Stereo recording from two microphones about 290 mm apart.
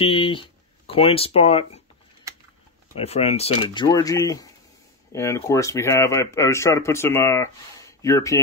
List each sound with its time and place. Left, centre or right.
0.0 s speech: centre
3.0 s speech: left